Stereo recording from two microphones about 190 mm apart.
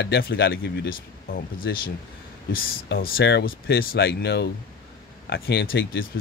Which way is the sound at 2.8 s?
50° left (ahead or behind).